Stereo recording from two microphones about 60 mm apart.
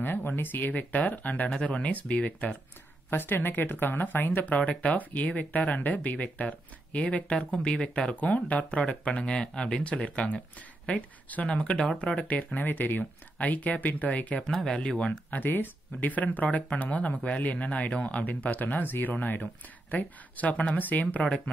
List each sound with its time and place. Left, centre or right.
0.0 s speech: left
3.1 s speech: left; by 12.3 s centre
12.3 s speech: left
14.5 s speech: centre
15.3 s speech: left